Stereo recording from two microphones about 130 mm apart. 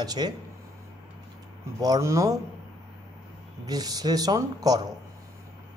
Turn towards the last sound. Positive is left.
turn(degrees=-30)  # may be behind; listen again after turning